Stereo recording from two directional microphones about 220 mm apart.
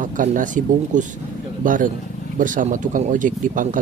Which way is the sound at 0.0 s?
35° right (ahead or behind).